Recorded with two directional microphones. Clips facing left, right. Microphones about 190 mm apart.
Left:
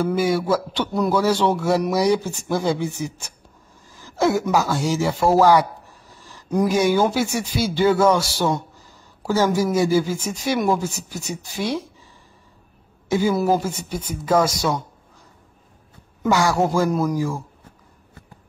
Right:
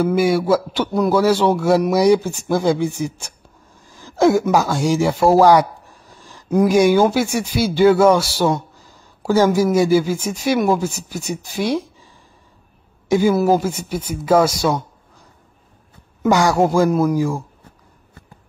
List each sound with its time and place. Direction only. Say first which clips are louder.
0.0 s a man's voice: right 4 dB; 10° right (ahead or behind)
2.6 s a man's voice: right 5 dB; 25° right (ahead or behind); by 10.9 s 10° right (ahead or behind)
11.1 s speech: right 4 dB; 30° right (ahead or behind)
13.1 s a man's voice: right 4 dB; 15° right (ahead or behind)
16.3 s a man's voice: right 4 dB; 20° right (ahead or behind)